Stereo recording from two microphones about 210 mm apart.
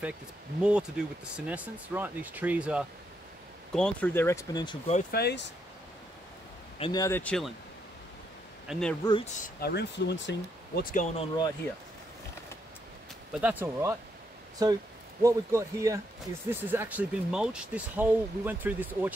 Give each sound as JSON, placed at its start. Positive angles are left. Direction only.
{"t": 0.6, "sound": "speech", "side_deg": -5}
{"t": 3.7, "sound": "speech", "side_deg": 5}
{"t": 5.1, "sound": "speech", "side_deg": 50}
{"t": 6.8, "sound": "speech", "side_deg": 20}
{"t": 8.6, "sound": "speech", "side_deg": 5}
{"t": 9.0, "sound": "speech", "side_deg": 25}
{"t": 9.3, "sound": "speech", "side_deg": 50}
{"t": 10.8, "sound": "speech", "side_deg": 40}
{"t": 11.1, "sound": "speech", "side_deg": 20}
{"t": 13.3, "sound": "speech", "side_deg": -5}
{"t": 15.2, "sound": "speech", "side_deg": -15}